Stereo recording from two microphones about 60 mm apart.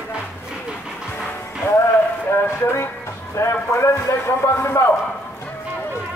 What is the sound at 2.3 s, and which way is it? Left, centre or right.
Music, left.